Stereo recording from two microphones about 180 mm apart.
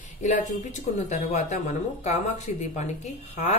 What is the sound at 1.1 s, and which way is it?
Speech, 40° left (ahead or behind).